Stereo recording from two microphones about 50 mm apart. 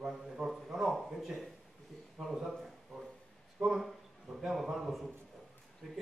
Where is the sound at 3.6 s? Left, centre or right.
Centre.